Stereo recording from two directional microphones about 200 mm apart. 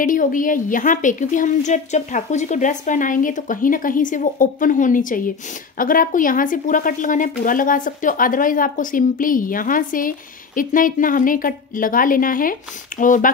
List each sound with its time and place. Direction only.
0.0 s a woman's voice: 40° left (ahead or behind)